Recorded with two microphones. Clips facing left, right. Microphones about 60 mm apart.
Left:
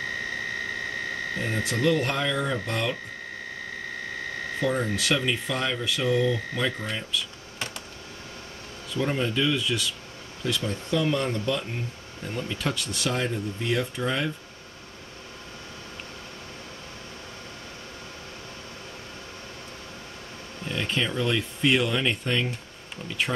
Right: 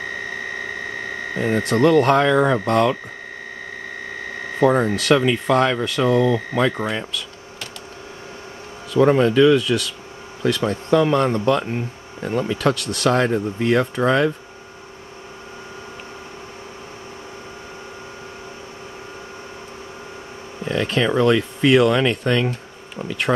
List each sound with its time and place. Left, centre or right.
1.6 s speech: right
4.6 s speech: right
4.9 s speech: right
8.9 s speech: right
20.6 s speech: right